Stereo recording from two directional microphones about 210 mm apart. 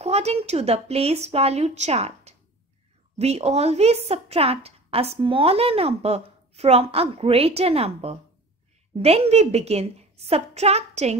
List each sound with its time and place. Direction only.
0.0 s a woman's voice: 30° right (ahead or behind)